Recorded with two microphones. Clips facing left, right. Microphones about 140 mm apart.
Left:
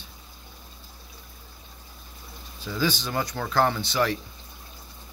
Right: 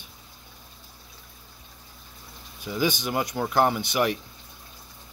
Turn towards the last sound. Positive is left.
turn(degrees=-15)  # may be behind; listen again after turning